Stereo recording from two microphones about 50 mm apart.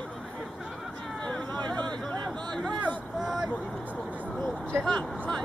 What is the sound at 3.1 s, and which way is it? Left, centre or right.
Speech, centre.